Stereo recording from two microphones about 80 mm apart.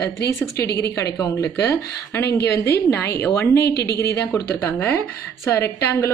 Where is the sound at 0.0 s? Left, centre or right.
Left.